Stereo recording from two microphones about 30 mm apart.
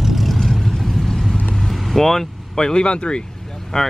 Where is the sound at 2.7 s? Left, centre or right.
Left.